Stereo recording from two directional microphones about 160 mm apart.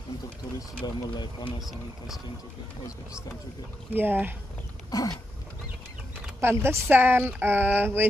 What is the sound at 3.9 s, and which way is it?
Speech, 10° right (ahead or behind).